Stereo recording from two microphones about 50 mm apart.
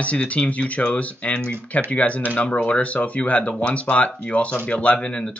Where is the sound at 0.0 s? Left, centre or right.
Left.